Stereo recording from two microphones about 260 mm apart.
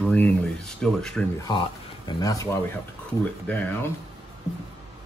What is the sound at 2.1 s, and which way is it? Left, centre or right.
Speech, centre.